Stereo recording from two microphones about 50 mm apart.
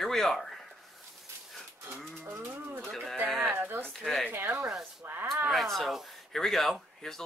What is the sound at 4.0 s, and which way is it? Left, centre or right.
Speech, centre.